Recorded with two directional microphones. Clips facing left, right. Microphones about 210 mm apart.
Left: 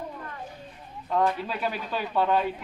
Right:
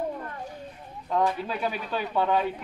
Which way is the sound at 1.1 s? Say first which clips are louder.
Even; centre (ahead or behind).